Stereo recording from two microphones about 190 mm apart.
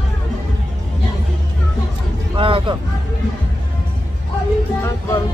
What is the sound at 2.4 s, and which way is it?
Speech, 25° right (ahead or behind).